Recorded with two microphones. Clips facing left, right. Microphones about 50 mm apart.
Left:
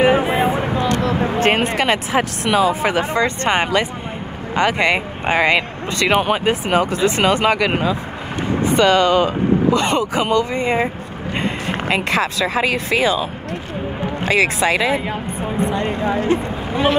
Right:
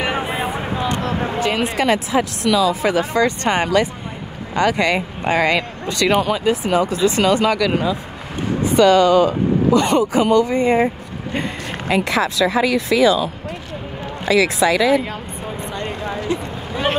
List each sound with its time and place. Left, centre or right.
0.0 s a sound: left
1.4 s speech: left
2.4 s speech: left
15.7 s speech: left
16.2 s speech: left